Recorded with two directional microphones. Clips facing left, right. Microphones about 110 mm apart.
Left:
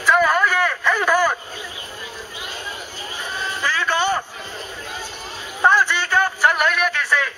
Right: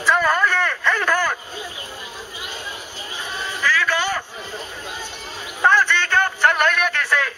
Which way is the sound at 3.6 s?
25° left (ahead or behind).